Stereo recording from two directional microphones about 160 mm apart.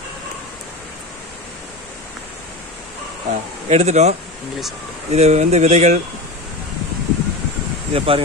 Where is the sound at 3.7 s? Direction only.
45° right (ahead or behind).